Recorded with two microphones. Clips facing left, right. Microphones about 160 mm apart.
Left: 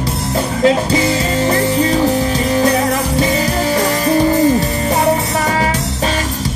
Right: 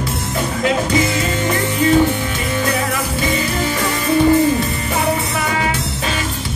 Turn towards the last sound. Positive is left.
turn(degrees=35)  # may be behind; listen again after turning